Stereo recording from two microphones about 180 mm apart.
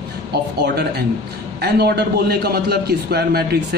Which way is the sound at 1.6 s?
65° right (ahead or behind).